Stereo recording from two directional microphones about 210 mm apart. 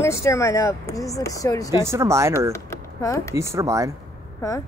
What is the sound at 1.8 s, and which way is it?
Speech, 10° right (ahead or behind).